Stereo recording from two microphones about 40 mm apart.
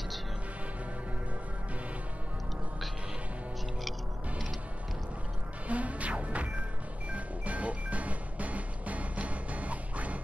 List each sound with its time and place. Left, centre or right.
5.7 s music: right